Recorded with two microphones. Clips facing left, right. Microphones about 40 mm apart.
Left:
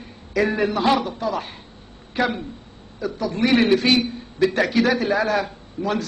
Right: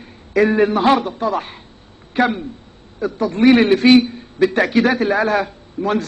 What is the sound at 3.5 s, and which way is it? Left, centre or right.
A man's voice, right.